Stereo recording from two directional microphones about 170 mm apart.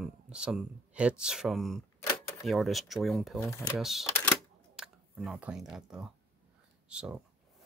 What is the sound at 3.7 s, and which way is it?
Speech, centre (ahead or behind).